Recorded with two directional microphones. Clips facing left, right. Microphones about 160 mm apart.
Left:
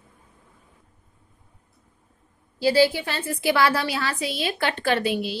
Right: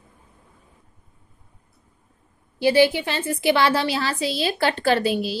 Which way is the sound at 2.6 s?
20° right (ahead or behind).